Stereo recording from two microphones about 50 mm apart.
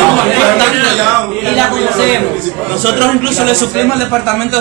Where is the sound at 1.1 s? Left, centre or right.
Centre.